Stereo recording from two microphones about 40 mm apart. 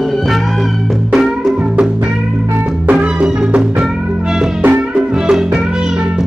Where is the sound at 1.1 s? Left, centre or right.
Centre.